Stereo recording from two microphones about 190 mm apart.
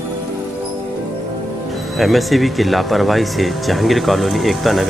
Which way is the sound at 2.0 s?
Centre (ahead or behind).